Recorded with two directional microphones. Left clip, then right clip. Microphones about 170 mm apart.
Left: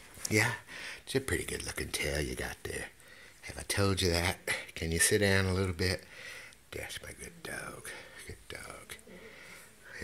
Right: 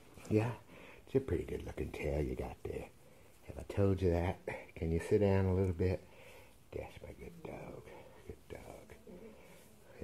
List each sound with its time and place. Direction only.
0.3 s speech: 10° left (ahead or behind)
2.0 s speech: 55° left (ahead or behind)
3.5 s speech: 10° left (ahead or behind)